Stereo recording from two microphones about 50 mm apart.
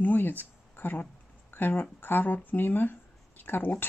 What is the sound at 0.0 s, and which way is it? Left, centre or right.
Speech, left.